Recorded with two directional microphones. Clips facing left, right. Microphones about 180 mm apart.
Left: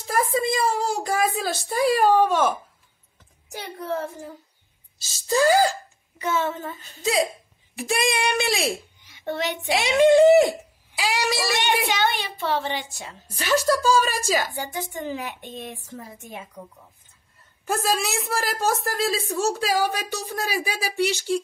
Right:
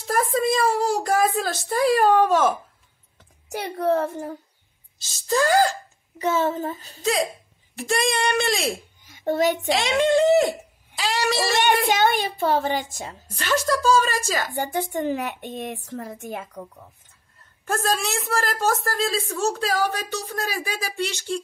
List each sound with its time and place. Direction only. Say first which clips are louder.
0.0 s a woman's voice: right 1 dB; centre (ahead or behind)
3.5 s speech: right 7 dB; 65° right (ahead or behind)
6.1 s speech: right 3 dB; 35° right (ahead or behind)
7.0 s a woman's voice: left 1 dB; 5° left (ahead or behind)
9.0 s a child's voice: right 7 dB; 45° right (ahead or behind)
9.7 s speech: left 3 dB; 10° left (ahead or behind)
11.5 s speech: right 4 dB; 45° right (ahead or behind)
13.4 s speech: left 1 dB; 5° left (ahead or behind)
14.5 s speech: right 5 dB; 55° right (ahead or behind)
17.6 s speech: even; 10° left (ahead or behind)